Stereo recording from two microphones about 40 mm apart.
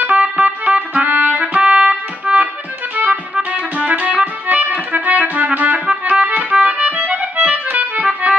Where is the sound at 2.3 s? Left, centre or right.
Right.